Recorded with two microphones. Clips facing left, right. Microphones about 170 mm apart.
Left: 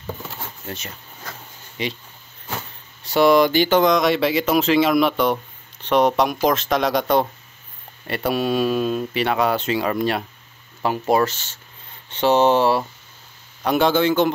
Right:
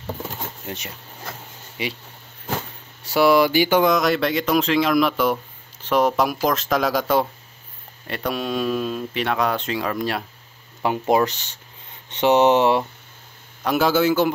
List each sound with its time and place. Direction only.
0.7 s speech: 10° right (ahead or behind)
3.0 s speech: 5° right (ahead or behind)
10.8 s speech: 15° right (ahead or behind)
13.7 s speech: 5° right (ahead or behind)